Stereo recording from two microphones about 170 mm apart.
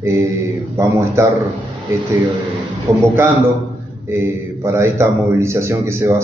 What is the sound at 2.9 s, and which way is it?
Speech, 15° right (ahead or behind).